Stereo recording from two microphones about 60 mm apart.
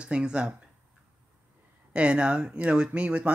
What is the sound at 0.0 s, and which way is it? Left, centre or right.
Speech, centre.